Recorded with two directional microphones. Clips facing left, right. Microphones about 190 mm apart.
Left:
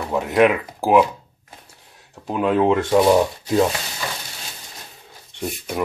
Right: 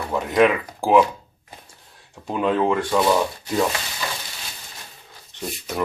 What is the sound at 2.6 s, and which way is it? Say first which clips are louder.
Speech: left 4 dB; 20° left (ahead or behind).